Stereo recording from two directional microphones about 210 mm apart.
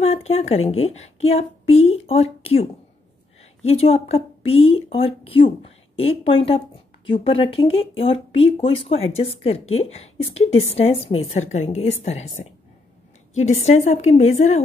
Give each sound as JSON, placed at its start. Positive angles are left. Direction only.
{"t": 0.0, "sound": "a woman's voice", "side_deg": 30}
{"t": 3.6, "sound": "a woman's voice", "side_deg": 30}